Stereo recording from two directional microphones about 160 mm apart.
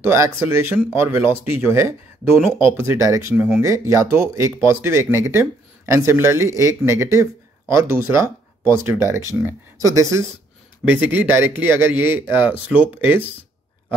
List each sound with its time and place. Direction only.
0.0 s speech: 15° right (ahead or behind)